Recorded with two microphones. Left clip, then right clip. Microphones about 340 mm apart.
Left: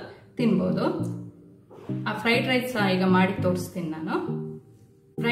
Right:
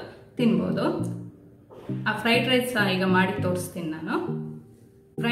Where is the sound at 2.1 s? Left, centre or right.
Centre.